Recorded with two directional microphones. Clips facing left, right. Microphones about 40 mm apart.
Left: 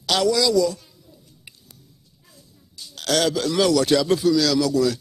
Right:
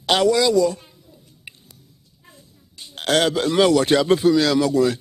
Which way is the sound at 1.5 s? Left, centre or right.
Right.